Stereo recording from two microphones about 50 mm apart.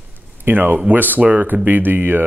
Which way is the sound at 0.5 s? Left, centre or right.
Right.